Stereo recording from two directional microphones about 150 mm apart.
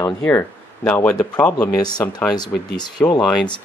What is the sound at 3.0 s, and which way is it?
Speech, 15° left (ahead or behind).